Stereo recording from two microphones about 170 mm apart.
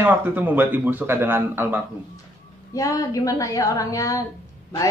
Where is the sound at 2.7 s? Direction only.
20° left (ahead or behind).